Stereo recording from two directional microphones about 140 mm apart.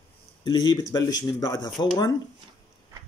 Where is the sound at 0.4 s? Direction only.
30° left (ahead or behind).